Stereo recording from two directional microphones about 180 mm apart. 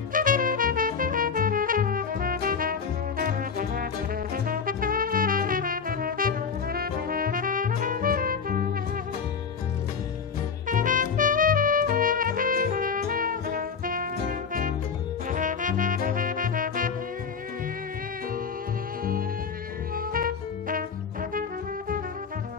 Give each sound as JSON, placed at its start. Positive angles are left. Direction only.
{"t": 0.1, "sound": "music", "side_deg": -50}
{"t": 10.7, "sound": "trumpet", "side_deg": -45}
{"t": 15.2, "sound": "music", "side_deg": -45}
{"t": 20.0, "sound": "music", "side_deg": -55}